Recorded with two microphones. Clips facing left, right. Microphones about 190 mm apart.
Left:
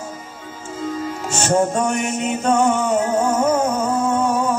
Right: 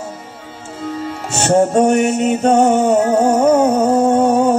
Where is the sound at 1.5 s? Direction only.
35° right (ahead or behind).